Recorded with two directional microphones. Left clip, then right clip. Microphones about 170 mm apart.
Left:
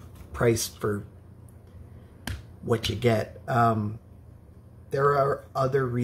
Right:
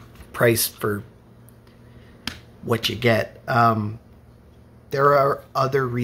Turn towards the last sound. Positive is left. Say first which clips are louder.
# right 4 dB
turn(degrees=-20)  # may be behind; listen again after turning